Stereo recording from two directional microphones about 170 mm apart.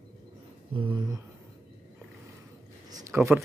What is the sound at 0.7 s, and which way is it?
Speech, 30° right (ahead or behind).